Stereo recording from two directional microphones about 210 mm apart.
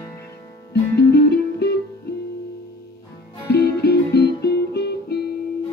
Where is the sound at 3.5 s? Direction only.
50° left (ahead or behind).